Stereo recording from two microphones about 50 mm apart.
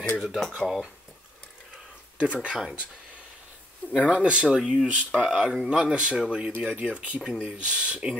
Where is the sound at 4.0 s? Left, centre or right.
Left.